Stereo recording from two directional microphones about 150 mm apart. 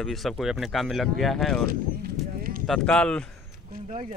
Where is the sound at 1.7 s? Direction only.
80° right.